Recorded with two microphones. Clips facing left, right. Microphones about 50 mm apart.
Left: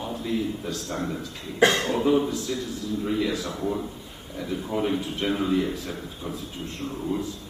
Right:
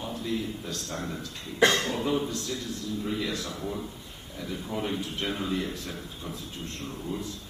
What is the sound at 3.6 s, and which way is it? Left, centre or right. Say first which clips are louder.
A man's voice: left 6 dB; centre.